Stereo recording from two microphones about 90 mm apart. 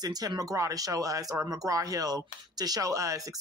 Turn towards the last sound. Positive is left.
turn(degrees=-35)  # may be behind; listen again after turning